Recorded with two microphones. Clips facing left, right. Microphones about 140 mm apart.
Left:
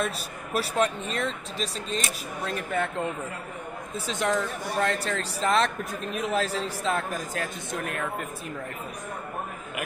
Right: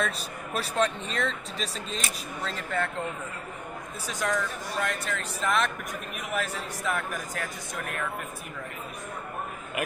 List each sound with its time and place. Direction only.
0.0 s speech: 5° left (ahead or behind)
2.4 s speech: 20° left (ahead or behind)
4.1 s a man's voice: 25° left (ahead or behind)